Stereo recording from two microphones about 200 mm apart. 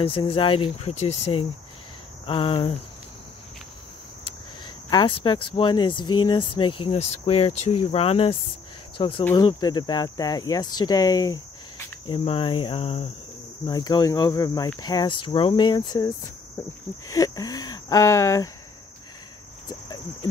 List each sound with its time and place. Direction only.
0.0 s speech: 30° left (ahead or behind)
4.8 s speech: 25° left (ahead or behind)
17.1 s speech: 15° left (ahead or behind)